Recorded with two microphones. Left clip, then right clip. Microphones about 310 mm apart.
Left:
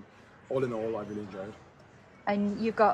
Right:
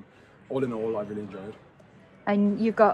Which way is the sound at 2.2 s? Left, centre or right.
Right.